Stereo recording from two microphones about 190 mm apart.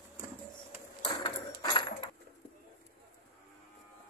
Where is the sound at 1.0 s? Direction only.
20° left (ahead or behind).